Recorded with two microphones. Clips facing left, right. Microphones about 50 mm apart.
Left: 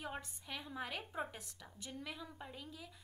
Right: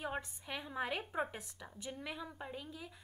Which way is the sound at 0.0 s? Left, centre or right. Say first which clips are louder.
Right 5 dB; centre.